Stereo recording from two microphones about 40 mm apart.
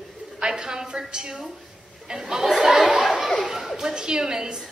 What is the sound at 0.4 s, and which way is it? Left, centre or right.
A child's voice, centre.